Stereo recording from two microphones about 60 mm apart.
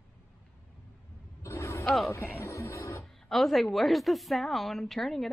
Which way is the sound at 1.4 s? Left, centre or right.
Left.